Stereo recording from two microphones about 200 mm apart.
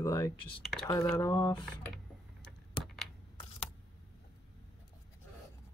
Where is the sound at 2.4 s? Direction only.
Centre (ahead or behind).